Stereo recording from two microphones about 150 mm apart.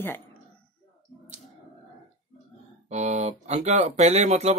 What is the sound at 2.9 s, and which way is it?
Speech, 50° right (ahead or behind).